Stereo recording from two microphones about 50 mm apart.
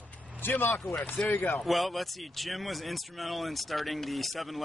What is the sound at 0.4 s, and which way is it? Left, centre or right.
Speech, left.